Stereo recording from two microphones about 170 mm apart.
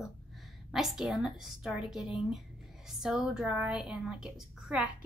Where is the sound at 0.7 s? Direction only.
Centre (ahead or behind).